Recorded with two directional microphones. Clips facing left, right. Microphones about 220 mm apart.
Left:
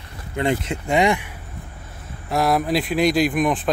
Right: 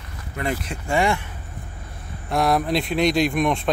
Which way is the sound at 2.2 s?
Centre (ahead or behind).